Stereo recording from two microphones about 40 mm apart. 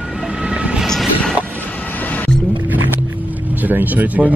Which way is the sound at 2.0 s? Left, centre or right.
Left.